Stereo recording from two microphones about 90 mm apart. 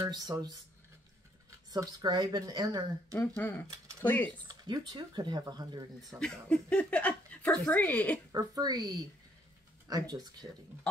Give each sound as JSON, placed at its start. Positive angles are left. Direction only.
{"t": 0.1, "sound": "speech", "side_deg": -45}
{"t": 1.7, "sound": "speech", "side_deg": -45}
{"t": 3.3, "sound": "speech", "side_deg": 25}
{"t": 4.5, "sound": "speech", "side_deg": -50}
{"t": 6.1, "sound": "speech", "side_deg": 10}
{"t": 8.3, "sound": "speech", "side_deg": -45}